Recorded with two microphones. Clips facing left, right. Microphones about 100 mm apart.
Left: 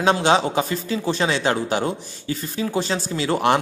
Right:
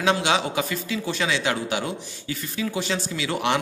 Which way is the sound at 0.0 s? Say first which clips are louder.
Left 4 dB; 35° left (ahead or behind).